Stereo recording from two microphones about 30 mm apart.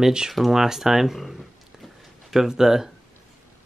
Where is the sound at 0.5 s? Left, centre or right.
Centre.